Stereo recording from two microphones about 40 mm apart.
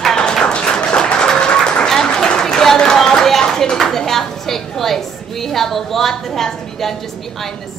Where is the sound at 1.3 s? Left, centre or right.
Left.